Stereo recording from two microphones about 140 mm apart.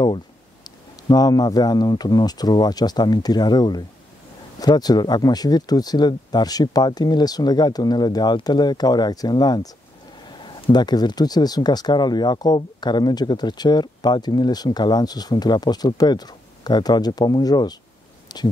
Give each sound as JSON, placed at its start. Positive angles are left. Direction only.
{"t": 0.7, "sound": "speech", "side_deg": 30}